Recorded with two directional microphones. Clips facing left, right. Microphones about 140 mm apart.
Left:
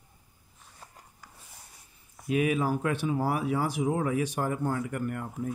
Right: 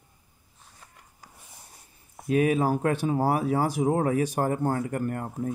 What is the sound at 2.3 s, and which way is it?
Speech, 35° right (ahead or behind).